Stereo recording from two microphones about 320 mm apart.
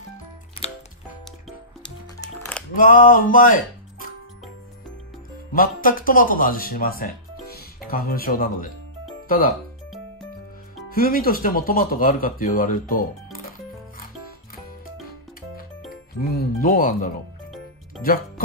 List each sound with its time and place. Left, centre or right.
1.8 s music: centre
2.7 s speech: left
5.5 s speech: left
10.9 s speech: left
16.2 s speech: left